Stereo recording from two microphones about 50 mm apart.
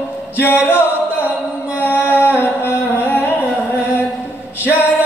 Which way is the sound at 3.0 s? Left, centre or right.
Left.